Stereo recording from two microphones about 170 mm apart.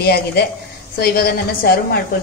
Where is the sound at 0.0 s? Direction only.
65° left (ahead or behind).